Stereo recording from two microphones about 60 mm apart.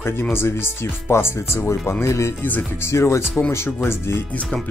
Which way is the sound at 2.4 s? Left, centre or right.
Left.